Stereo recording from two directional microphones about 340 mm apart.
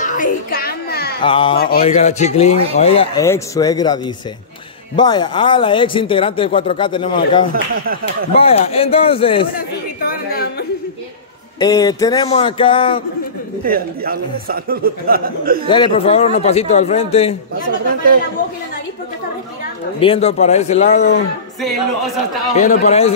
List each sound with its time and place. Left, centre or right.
0.0 s a sound: left
1.2 s speech: centre
11.6 s speech: centre
13.7 s speech: right
15.7 s speech: centre
20.0 s a man's voice: centre
22.6 s a man's voice: centre